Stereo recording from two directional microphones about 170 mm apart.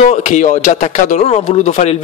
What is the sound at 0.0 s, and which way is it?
Speech, 40° left (ahead or behind).